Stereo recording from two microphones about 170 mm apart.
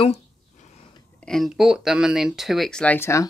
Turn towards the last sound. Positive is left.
turn(degrees=15)  # may be behind; listen again after turning